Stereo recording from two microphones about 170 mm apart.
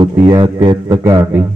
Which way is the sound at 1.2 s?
15° right (ahead or behind).